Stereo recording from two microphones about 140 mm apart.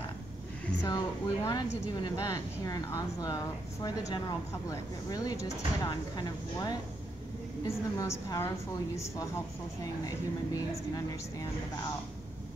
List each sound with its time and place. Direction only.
0.8 s a woman's voice: 30° left (ahead or behind)